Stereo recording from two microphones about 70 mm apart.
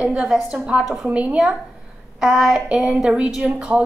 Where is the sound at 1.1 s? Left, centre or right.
Centre.